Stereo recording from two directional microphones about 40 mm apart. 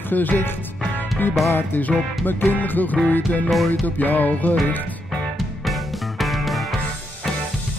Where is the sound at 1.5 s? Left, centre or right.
Left.